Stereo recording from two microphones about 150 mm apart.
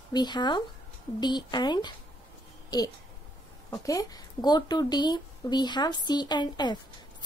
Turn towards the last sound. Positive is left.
turn(degrees=30)  # may be behind; listen again after turning